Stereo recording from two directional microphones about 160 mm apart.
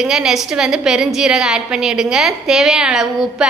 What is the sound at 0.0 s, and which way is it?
A woman's voice, 5° right (ahead or behind).